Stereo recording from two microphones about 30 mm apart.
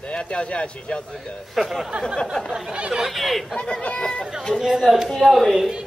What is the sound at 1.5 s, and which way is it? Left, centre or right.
Speech, centre.